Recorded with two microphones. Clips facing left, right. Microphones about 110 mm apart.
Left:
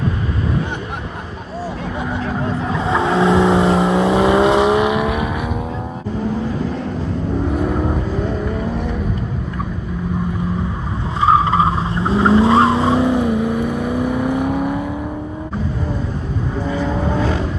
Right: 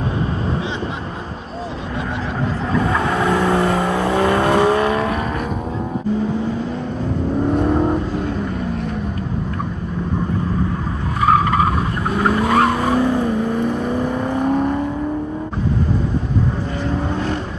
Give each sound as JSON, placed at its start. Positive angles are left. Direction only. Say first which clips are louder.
{"t": 2.7, "sound": "vehicle", "louder": "left 1 dB", "side_deg": 25}
{"t": 7.5, "sound": "vehicle", "louder": "right 4 dB", "side_deg": 0}
{"t": 11.1, "sound": "vehicle", "louder": "left 1 dB", "side_deg": 25}